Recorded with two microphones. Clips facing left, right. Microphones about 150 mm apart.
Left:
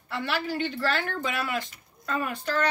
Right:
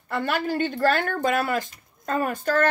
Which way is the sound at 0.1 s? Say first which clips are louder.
Right 4 dB; 45° right (ahead or behind).